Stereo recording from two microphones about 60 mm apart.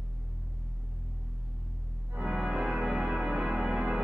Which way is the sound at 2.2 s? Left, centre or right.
Centre.